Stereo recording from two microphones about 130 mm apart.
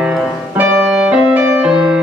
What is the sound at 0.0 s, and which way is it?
Music, 10° right (ahead or behind).